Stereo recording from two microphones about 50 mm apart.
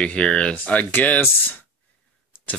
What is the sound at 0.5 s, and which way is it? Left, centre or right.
Speech, left.